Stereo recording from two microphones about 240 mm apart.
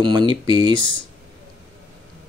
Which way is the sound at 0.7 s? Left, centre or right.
Right.